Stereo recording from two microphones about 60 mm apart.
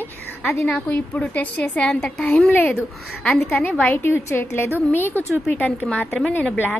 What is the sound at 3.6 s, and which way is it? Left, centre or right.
Speech, left.